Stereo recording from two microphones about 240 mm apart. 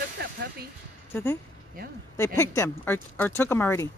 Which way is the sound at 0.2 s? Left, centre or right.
Right.